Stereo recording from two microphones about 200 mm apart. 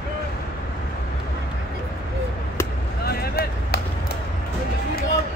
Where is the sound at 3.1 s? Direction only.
50° left (ahead or behind).